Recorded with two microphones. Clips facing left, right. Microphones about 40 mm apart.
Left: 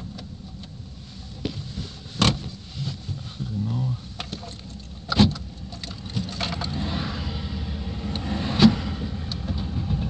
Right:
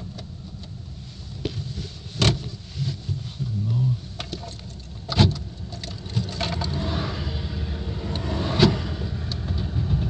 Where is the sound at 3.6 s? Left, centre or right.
Centre.